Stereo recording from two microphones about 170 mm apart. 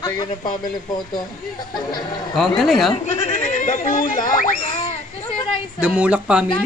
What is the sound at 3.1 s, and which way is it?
Speech, 45° left (ahead or behind).